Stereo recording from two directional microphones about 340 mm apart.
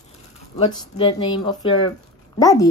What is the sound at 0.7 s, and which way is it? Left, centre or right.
Speech, centre.